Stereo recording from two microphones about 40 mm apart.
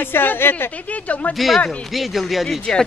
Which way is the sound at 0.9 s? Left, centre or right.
Left.